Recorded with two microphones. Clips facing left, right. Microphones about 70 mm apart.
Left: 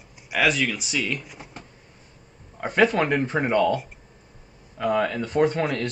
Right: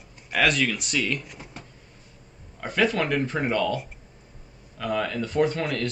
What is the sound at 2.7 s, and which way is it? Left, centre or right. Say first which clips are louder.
Speech: left 3 dB; left.